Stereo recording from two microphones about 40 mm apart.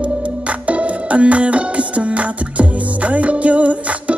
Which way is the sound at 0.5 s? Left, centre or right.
Right.